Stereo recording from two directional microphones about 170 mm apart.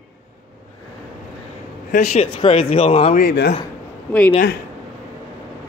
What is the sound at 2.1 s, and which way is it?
Speech, 35° left (ahead or behind).